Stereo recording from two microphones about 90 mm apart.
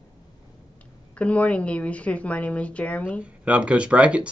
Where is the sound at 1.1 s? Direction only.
15° left (ahead or behind).